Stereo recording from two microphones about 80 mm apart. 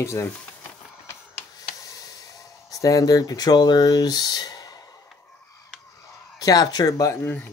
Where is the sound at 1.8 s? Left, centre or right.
Left.